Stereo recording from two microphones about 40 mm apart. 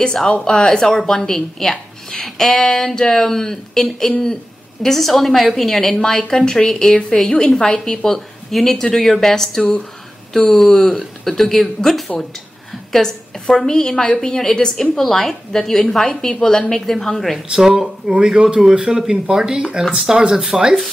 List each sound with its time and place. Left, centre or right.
0.0 s a woman's voice: centre
12.9 s a woman's voice: centre
17.5 s speech: centre